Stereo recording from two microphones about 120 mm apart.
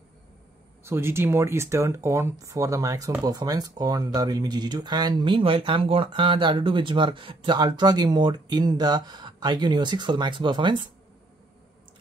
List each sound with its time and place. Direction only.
0.8 s speech: 20° right (ahead or behind); by 10.9 s 40° right (ahead or behind)